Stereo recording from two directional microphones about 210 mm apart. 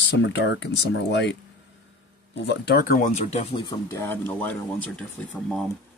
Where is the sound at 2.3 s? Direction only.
55° left (ahead or behind); by 3.7 s 25° left (ahead or behind).